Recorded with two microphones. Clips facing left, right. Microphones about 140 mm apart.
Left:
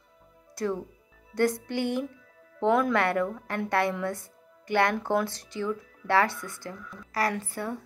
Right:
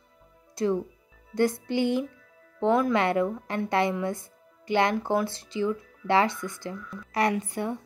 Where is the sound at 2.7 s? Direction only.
5° right (ahead or behind).